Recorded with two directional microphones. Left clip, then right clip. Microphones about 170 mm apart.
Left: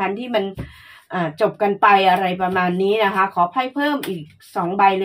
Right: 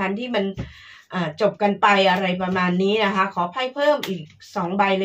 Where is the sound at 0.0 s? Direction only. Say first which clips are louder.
Left 3 dB; 40° left (ahead or behind).